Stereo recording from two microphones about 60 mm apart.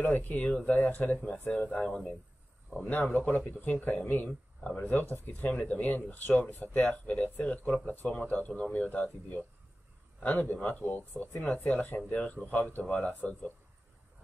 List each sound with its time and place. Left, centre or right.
0.0 s speech: left
10.5 s speech: left